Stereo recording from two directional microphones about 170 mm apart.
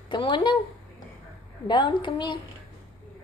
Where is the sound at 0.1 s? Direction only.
30° left (ahead or behind).